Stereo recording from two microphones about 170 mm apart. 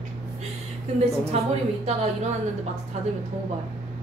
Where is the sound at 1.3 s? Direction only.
35° right (ahead or behind).